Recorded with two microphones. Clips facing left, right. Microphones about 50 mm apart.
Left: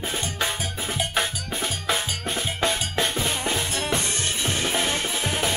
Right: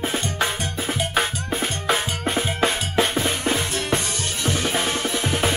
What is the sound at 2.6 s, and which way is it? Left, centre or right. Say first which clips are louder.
Drum: right 2 dB; centre.